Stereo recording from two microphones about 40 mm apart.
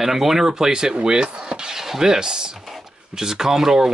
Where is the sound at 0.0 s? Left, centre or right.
Centre.